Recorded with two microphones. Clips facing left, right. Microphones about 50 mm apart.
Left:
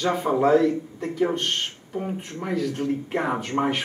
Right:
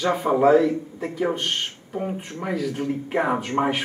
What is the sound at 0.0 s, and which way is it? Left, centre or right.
Speech, centre.